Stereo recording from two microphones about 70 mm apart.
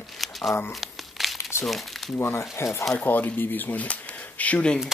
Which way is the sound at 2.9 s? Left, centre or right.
Left.